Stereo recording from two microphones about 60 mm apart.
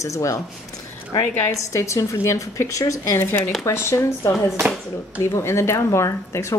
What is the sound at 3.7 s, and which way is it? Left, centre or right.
Speech, left.